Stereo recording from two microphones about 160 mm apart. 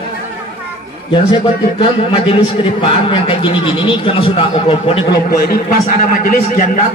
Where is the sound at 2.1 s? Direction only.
30° left (ahead or behind).